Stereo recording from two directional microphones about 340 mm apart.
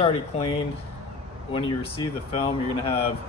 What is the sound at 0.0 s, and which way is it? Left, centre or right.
Speech, centre.